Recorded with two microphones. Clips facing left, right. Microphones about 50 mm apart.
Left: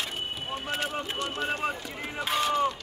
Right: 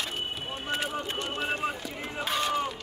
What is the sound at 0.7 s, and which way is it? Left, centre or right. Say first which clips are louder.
Run: right 1 dB; centre.